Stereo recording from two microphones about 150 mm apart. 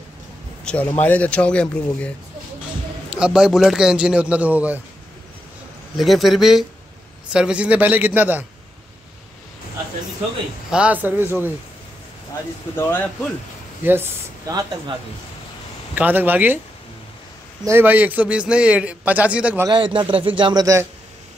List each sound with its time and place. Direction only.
0.7 s speech: 10° left (ahead or behind)
3.1 s a man's voice: 5° right (ahead or behind)
5.9 s a man's voice: centre (ahead or behind)
10.7 s a man's voice: 10° right (ahead or behind)
12.7 s speech: 15° left (ahead or behind)
13.8 s a man's voice: 15° right (ahead or behind)
15.9 s a man's voice: 10° right (ahead or behind)
17.6 s a man's voice: 15° right (ahead or behind)
19.7 s speech: 30° right (ahead or behind)